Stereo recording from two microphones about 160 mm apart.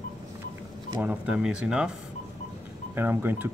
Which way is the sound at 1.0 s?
5° right (ahead or behind).